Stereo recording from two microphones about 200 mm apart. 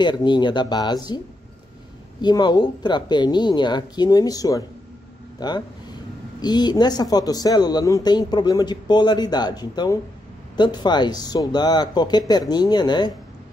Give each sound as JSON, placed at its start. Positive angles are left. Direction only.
{"t": 0.0, "sound": "speech", "side_deg": 20}
{"t": 2.2, "sound": "speech", "side_deg": 20}